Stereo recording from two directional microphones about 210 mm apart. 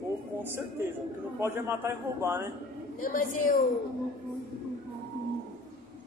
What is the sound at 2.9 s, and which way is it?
Speech, 40° left (ahead or behind).